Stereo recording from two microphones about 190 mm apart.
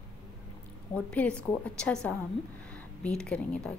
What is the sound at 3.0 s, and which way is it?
Speech, 5° left (ahead or behind).